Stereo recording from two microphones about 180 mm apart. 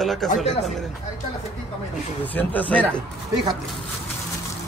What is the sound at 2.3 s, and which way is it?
Speech, 10° left (ahead or behind).